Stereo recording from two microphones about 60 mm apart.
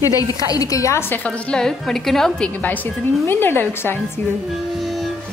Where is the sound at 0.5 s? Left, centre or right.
Left.